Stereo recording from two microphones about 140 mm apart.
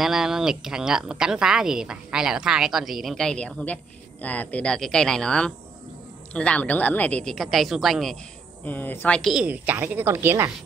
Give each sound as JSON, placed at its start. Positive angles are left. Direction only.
{"t": 0.0, "sound": "a woman's voice", "side_deg": -5}
{"t": 8.6, "sound": "speech", "side_deg": 15}
{"t": 9.2, "sound": "a woman's voice", "side_deg": -5}